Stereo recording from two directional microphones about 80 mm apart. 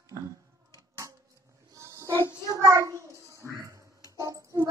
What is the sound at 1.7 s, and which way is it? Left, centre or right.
Child singing, right.